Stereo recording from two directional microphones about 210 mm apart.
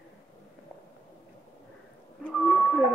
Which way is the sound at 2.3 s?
Centre (ahead or behind).